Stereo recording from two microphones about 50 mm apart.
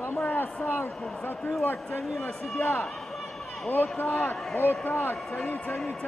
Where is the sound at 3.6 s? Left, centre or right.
Left.